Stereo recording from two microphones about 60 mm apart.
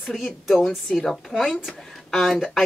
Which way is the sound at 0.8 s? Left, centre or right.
Centre.